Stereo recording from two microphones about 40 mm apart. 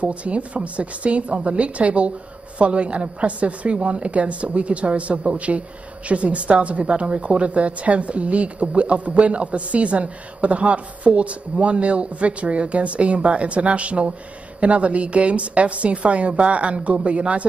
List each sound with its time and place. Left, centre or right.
0.0 s a woman's voice: right